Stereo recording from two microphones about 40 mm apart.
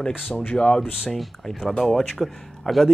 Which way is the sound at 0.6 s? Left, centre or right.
Centre.